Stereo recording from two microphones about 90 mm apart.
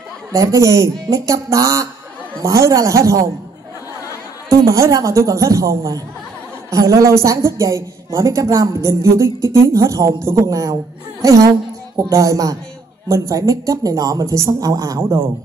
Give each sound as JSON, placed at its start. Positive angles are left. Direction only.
{"t": 0.3, "sound": "a woman's voice", "side_deg": -35}
{"t": 4.5, "sound": "a woman's voice", "side_deg": -35}